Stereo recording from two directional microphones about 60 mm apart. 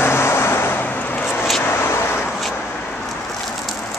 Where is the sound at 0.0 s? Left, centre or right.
Left.